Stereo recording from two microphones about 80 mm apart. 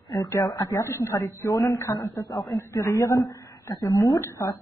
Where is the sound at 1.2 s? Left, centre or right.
Left.